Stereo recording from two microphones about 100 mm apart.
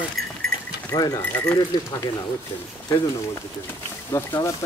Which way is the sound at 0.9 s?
40° left (ahead or behind).